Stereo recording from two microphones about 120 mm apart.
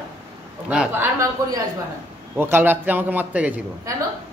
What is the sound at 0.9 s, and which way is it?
Speech, 20° right (ahead or behind).